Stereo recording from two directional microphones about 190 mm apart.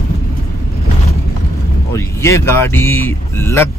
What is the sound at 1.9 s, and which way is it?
Speech, 15° left (ahead or behind).